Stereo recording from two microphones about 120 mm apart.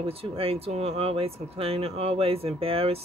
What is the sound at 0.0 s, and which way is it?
Speech, 50° right (ahead or behind).